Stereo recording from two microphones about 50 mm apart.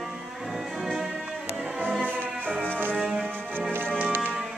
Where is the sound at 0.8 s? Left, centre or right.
Centre.